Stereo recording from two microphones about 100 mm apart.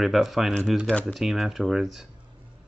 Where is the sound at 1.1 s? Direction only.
Centre (ahead or behind).